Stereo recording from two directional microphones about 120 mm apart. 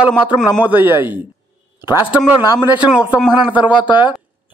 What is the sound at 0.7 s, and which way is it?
A man's voice, 15° right (ahead or behind).